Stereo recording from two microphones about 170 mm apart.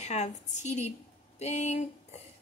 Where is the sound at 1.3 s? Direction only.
40° left (ahead or behind).